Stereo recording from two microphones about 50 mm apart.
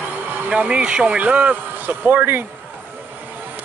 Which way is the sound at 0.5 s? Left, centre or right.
Right.